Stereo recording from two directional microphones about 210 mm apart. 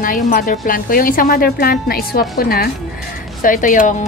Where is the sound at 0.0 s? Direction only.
40° left (ahead or behind).